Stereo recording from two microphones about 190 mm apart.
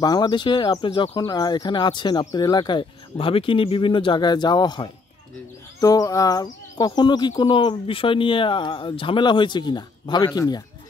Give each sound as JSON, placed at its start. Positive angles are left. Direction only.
{"t": 0.0, "sound": "speech", "side_deg": 20}